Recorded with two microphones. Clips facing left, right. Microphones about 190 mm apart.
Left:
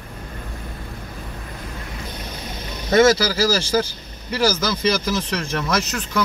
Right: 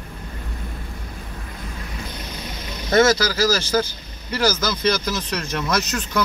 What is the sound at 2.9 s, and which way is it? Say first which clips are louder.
Speech: left 2 dB; 10° left (ahead or behind).